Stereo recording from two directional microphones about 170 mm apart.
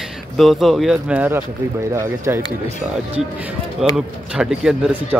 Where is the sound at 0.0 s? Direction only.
Centre (ahead or behind).